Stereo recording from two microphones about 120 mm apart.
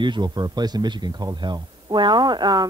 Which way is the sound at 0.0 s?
40° right (ahead or behind).